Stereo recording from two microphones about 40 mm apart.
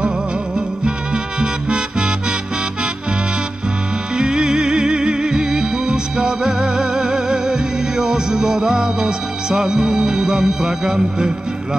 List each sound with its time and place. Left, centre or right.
0.6 s music: right
4.1 s music: right